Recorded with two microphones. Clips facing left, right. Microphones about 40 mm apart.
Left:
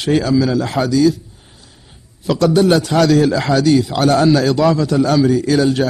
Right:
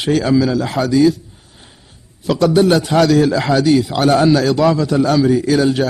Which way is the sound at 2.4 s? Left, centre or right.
Centre.